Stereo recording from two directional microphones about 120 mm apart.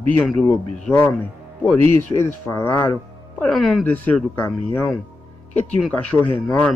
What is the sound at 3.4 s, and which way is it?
Speech, 5° left (ahead or behind).